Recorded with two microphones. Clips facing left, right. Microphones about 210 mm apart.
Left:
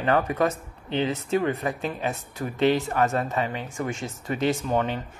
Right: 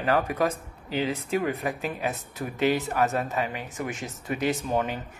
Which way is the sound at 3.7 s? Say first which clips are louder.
Left 3 dB; 20° right (ahead or behind).